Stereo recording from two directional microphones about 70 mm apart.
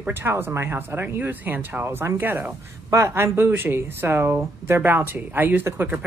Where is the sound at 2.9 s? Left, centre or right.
Right.